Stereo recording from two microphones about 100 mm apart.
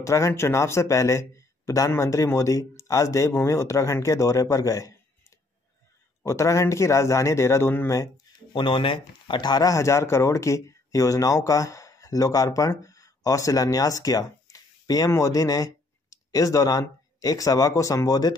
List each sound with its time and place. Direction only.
0.0 s speech: 30° left (ahead or behind)
6.2 s a man's voice: 30° left (ahead or behind)
8.5 s speech: 55° left (ahead or behind); by 18.3 s 40° left (ahead or behind)